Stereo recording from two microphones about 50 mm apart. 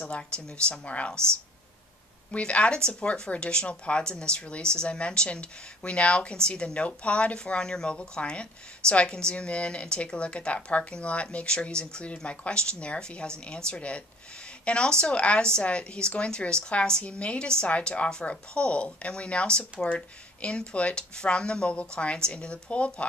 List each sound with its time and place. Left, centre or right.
0.0 s speech: centre
1.1 s speech: right
2.3 s speech: left